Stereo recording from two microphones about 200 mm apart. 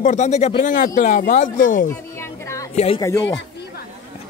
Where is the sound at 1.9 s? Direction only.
15° left (ahead or behind).